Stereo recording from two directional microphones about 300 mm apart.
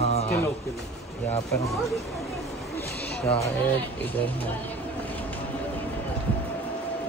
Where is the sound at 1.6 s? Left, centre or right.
Centre.